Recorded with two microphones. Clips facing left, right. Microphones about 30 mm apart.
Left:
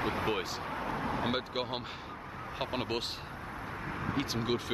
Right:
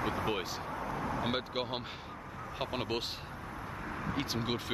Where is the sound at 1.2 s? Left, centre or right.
Centre.